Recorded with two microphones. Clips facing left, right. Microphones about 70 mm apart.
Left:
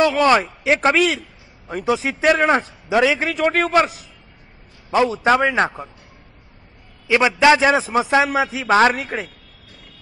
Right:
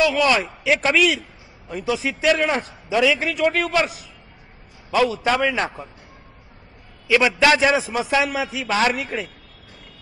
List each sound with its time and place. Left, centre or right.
0.0 s a man's voice: left
2.2 s a man's voice: left
4.9 s a man's voice: left
7.1 s a man's voice: left
7.7 s a man's voice: left
8.1 s a man's voice: left